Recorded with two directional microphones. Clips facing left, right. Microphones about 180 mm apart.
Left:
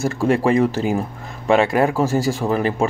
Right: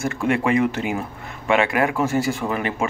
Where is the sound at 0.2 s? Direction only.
35° left (ahead or behind).